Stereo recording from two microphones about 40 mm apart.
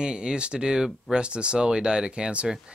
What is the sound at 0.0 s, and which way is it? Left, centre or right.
Speech, right.